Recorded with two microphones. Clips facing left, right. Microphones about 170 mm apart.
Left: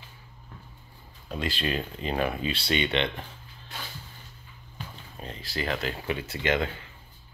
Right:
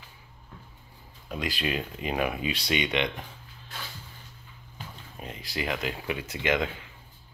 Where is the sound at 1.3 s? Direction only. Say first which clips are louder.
Left 1 dB; 10° right (ahead or behind).